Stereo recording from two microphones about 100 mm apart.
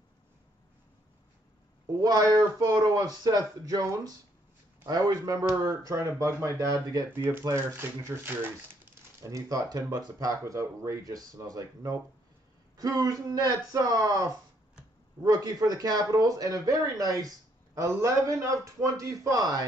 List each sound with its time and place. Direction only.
2.0 s speech: 40° right (ahead or behind)
7.1 s speech: 20° right (ahead or behind)
9.2 s speech: 35° right (ahead or behind)